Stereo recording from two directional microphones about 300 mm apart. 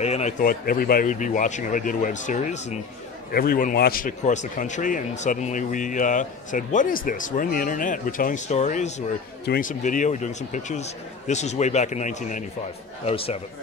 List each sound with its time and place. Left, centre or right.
0.0 s a man's voice: left